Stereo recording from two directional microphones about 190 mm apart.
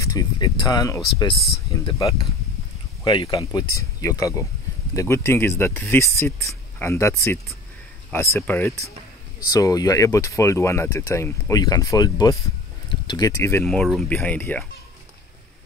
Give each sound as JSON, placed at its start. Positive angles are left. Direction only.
{"t": 0.0, "sound": "speech", "side_deg": 20}
{"t": 13.7, "sound": "speech", "side_deg": 0}